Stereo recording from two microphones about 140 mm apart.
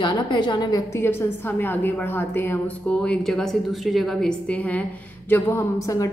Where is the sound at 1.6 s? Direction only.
15° left (ahead or behind).